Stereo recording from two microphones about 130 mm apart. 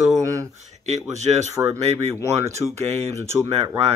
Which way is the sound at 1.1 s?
60° right (ahead or behind).